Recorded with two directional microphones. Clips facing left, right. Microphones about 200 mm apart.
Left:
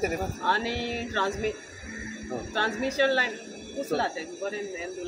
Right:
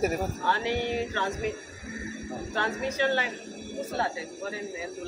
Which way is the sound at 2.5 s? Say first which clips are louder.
Left 1 dB; 35° left (ahead or behind).